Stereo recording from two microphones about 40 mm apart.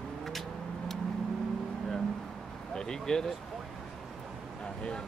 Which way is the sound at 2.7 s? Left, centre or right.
Centre.